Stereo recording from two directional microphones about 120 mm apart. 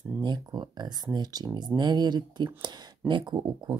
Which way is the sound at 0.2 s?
35° right (ahead or behind).